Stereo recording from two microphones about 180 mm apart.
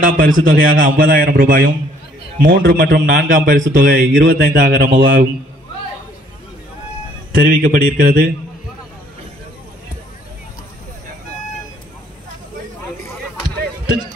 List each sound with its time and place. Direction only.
0.0 s a man's voice: 50° right (ahead or behind)
3.9 s speech: 90° right; by 5.3 s 55° right (ahead or behind)
7.3 s a man's voice: 55° right (ahead or behind)